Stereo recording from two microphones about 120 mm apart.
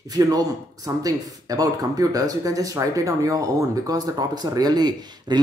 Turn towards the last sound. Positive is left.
turn(degrees=-35)  # may be behind; listen again after turning